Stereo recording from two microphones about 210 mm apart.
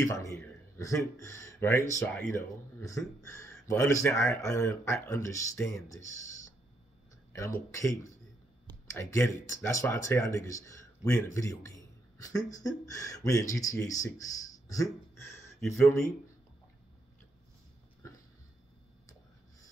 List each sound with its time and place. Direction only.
0.0 s speech: 15° left (ahead or behind)
5.9 s speech: 65° right (ahead or behind)
7.7 s speech: 15° left (ahead or behind)
14.7 s a sound: 15° left (ahead or behind)